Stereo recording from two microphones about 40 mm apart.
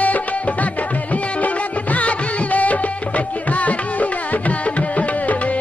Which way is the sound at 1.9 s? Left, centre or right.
Left.